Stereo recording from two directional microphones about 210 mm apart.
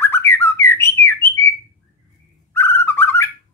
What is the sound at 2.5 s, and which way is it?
Bird, 10° left (ahead or behind).